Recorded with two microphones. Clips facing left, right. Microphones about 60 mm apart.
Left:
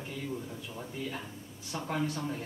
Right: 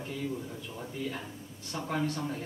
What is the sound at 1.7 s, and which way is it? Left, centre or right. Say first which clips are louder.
Speech: right 1 dB; centre.